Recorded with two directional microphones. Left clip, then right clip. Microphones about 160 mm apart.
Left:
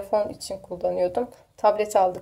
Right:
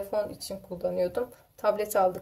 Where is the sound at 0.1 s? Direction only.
30° left (ahead or behind).